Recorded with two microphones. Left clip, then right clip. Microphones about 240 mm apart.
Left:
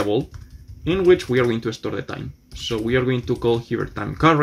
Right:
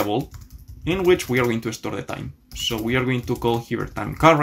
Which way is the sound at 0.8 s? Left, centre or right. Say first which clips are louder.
Left 2 dB; centre.